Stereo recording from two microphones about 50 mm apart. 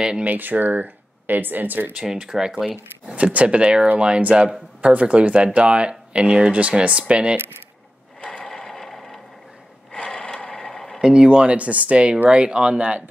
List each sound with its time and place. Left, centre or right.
0.2 s speech: right
2.0 s speech: centre
2.7 s speech: right
8.2 s mechanisms: centre
9.9 s a sound: centre
11.0 s speech: centre